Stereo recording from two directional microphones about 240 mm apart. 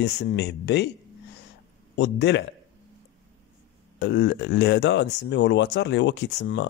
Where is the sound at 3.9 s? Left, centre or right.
Left.